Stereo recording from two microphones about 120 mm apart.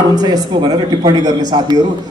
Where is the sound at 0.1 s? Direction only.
35° right (ahead or behind).